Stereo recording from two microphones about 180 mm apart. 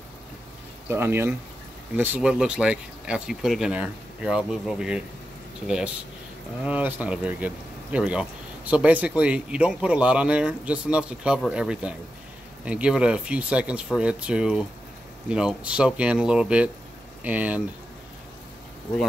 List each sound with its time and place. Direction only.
0.8 s speech: 15° right (ahead or behind)
6.6 s speech: 10° right (ahead or behind)